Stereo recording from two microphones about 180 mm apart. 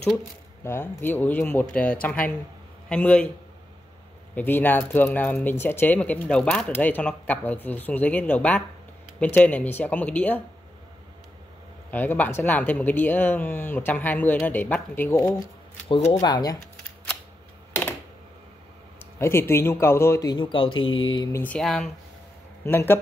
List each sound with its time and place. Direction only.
0.7 s speech: 15° left (ahead or behind)
4.4 s speech: 10° left (ahead or behind)
11.9 s speech: 10° left (ahead or behind)
15.9 s speech: 30° left (ahead or behind)
19.1 s speech: 15° left (ahead or behind)
21.4 s speech: 5° left (ahead or behind)